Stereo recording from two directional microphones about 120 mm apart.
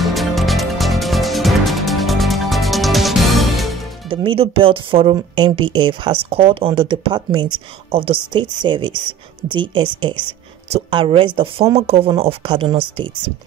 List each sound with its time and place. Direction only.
0.0 s music: centre (ahead or behind)
4.1 s speech: 45° right (ahead or behind)
6.3 s speech: 55° right (ahead or behind)